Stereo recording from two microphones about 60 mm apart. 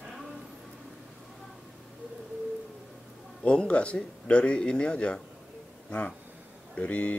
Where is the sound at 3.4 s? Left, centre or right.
Centre.